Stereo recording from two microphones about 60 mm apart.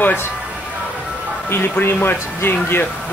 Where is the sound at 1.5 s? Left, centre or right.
Left.